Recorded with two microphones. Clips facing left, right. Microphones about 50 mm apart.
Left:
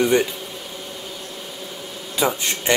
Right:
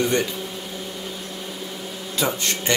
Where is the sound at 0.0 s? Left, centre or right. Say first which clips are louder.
Left 4 dB; centre.